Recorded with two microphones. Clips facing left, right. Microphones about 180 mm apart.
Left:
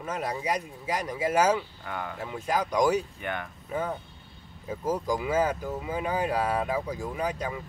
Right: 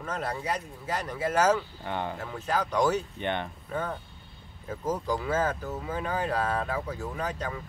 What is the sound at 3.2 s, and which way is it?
Speech, 30° right (ahead or behind).